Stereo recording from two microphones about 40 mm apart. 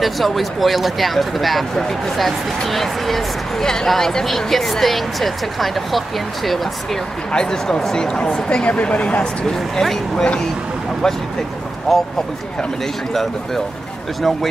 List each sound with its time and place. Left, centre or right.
0.0 s speech: centre
7.2 s speech: centre
9.8 s speech: centre
11.9 s speech: centre